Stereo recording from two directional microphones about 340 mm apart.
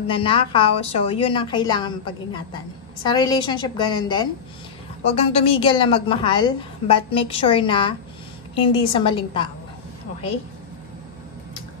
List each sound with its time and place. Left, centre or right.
0.0 s a woman's voice: centre